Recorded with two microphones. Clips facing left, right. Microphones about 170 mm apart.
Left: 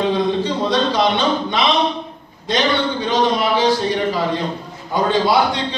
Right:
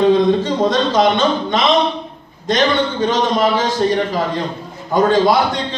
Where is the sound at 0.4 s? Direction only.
45° right (ahead or behind).